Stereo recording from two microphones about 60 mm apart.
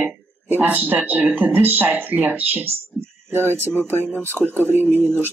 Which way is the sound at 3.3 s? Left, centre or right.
Right.